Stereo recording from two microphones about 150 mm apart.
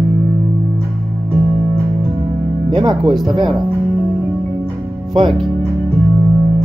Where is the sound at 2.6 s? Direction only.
30° right (ahead or behind).